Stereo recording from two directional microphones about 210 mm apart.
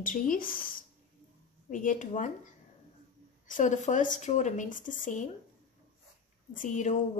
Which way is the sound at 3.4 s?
35° left (ahead or behind).